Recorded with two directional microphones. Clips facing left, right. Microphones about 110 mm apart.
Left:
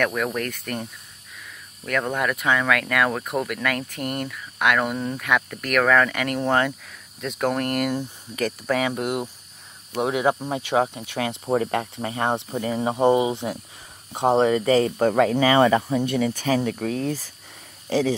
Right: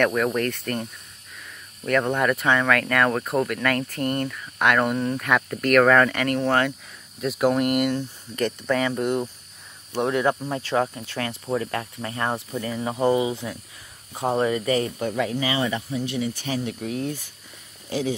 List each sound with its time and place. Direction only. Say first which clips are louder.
0.0 s speech: right 3 dB; centre (ahead or behind)
1.9 s speech: right 3 dB; centre (ahead or behind)
6.1 s speech: right 1 dB; 5° left (ahead or behind)
7.2 s speech: right 3 dB; 5° right (ahead or behind); by 14.9 s 30° left (ahead or behind)
15.0 s speech: left 7 dB; 60° left (ahead or behind)
17.0 s speech: left 3 dB; 40° left (ahead or behind)